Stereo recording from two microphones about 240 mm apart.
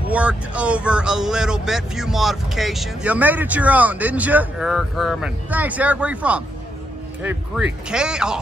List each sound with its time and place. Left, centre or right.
0.1 s speech: centre
7.9 s speech: centre